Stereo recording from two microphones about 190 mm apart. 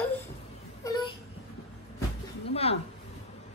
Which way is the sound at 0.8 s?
20° left (ahead or behind).